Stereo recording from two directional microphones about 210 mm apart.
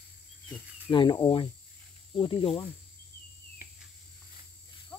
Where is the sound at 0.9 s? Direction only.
20° left (ahead or behind).